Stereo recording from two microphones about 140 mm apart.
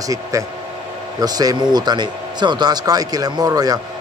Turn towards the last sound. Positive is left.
turn(degrees=-25)  # may be behind; listen again after turning